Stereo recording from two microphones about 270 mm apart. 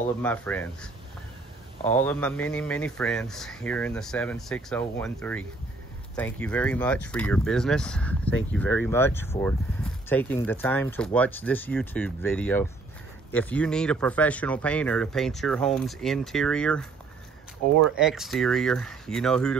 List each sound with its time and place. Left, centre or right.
0.2 s speech: centre
1.9 s speech: centre
17.9 s speech: centre